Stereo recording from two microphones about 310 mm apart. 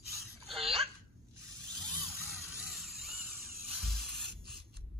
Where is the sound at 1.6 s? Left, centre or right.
Centre.